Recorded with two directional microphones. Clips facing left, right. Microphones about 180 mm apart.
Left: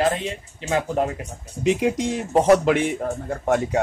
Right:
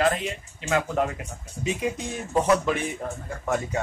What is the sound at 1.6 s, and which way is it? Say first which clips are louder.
A man's voice: left 8 dB; 85° left.